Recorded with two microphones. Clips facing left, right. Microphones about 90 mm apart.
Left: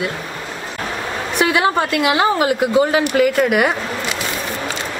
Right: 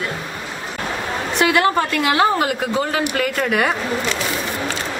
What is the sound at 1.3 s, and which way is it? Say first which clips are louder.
Speech: even; 15° left (ahead or behind).